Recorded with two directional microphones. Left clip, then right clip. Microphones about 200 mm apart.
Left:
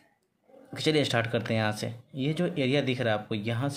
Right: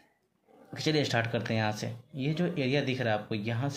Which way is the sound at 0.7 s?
20° left (ahead or behind).